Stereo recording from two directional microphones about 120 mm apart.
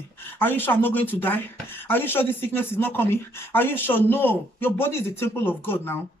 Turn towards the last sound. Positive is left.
turn(degrees=20)  # may be behind; listen again after turning